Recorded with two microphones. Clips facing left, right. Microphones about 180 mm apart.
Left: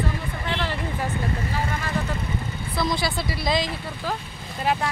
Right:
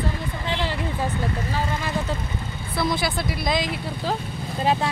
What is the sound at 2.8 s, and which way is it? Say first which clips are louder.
Speech: right 1 dB; 5° right (ahead or behind).